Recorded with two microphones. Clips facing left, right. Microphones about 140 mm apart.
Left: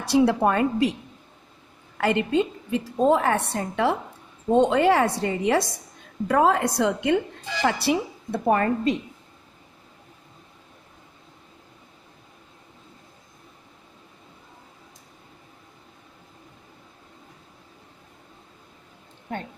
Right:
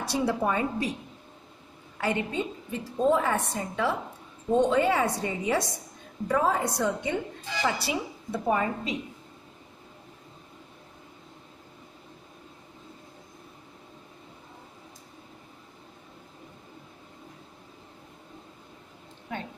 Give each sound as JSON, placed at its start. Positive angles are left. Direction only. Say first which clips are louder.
{"t": 0.0, "sound": "a woman's voice", "louder": "left 7 dB", "side_deg": 85}
{"t": 2.0, "sound": "a woman's voice", "louder": "left 7 dB", "side_deg": 85}
{"t": 7.6, "sound": "a woman's voice", "louder": "left 6 dB", "side_deg": 60}